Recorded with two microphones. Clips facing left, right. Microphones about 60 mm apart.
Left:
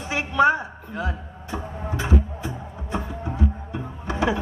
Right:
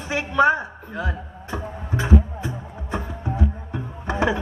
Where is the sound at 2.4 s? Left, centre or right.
Right.